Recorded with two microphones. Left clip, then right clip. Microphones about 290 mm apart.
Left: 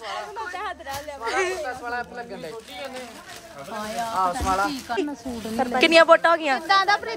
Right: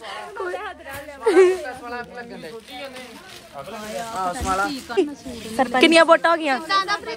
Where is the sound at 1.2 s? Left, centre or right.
Centre.